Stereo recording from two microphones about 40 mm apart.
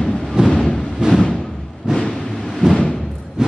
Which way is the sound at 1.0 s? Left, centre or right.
Centre.